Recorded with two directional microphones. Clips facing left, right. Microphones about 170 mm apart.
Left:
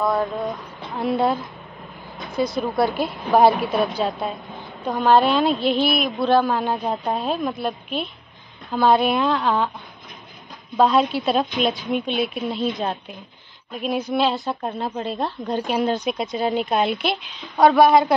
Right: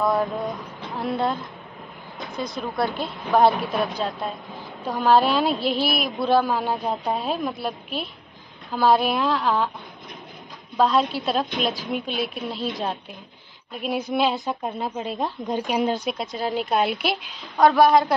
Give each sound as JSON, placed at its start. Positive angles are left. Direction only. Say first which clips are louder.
{"t": 0.0, "sound": "a woman's voice", "louder": "left 1 dB", "side_deg": 0}
{"t": 10.8, "sound": "a woman's voice", "louder": "left 3 dB", "side_deg": 0}
{"t": 15.2, "sound": "speech", "louder": "even", "side_deg": -15}
{"t": 15.9, "sound": "a woman's voice", "louder": "left 3 dB", "side_deg": 0}